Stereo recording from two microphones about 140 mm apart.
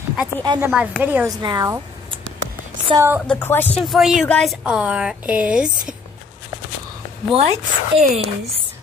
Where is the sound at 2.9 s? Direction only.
15° right (ahead or behind).